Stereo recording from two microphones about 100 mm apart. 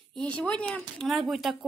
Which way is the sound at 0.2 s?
10° left (ahead or behind).